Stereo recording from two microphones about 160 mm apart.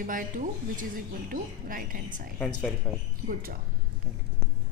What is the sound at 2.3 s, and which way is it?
Speech, 5° left (ahead or behind).